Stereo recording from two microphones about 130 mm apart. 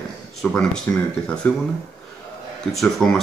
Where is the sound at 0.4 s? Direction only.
10° left (ahead or behind).